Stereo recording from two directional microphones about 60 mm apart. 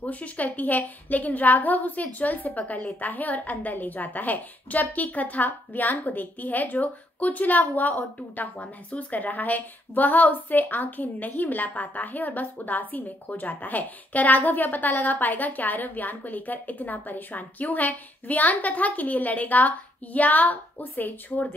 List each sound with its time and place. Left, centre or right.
0.0 s a woman's voice: left